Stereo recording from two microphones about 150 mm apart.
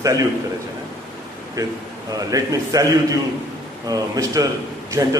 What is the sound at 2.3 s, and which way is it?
Speech, 25° right (ahead or behind).